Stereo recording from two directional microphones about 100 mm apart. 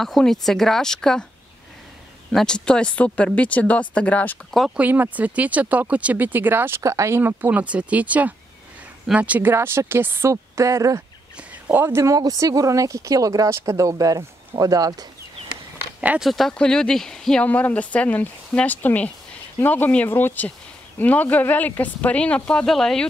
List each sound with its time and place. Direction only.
0.0 s speech: 5° left (ahead or behind)
2.3 s speech: 10° left (ahead or behind)
4.5 s speech: centre (ahead or behind)
4.7 s speech: 20° right (ahead or behind); by 11.0 s 35° right (ahead or behind)
11.6 s speech: 20° right (ahead or behind)
14.6 s a sound: 35° right (ahead or behind)
16.2 s speech: centre (ahead or behind)